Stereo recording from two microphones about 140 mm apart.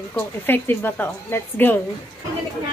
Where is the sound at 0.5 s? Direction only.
15° left (ahead or behind).